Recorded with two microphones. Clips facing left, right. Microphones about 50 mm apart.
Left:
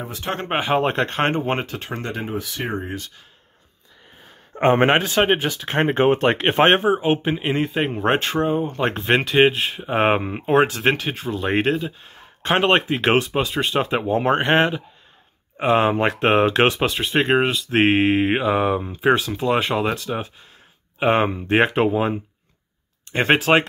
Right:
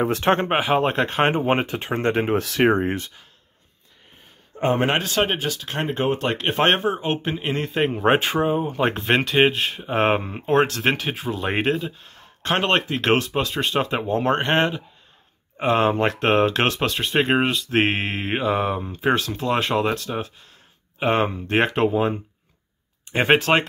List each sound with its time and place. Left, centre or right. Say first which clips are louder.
0.0 s speech: right 10 dB; right
0.5 s speech: even; centre; by 2.0 s right
2.0 s speech: right 10 dB; right
2.3 s speech: right 8 dB; right
4.6 s speech: left 5 dB; left
4.9 s speech: left 4 dB; centre
5.4 s speech: left 5 dB; left
6.6 s speech: left 4 dB; centre
10.5 s speech: left 2 dB; centre
12.1 s speech: left 3 dB; centre